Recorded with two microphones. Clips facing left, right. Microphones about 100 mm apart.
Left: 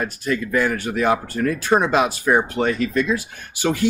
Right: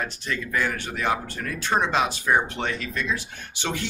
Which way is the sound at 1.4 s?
25° left (ahead or behind).